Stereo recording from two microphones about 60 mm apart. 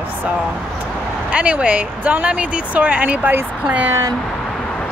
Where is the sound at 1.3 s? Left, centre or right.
Right.